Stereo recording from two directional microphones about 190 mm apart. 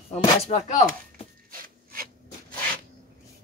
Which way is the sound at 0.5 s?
35° left (ahead or behind).